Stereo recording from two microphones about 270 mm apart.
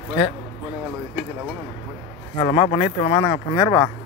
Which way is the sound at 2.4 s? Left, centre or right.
Centre.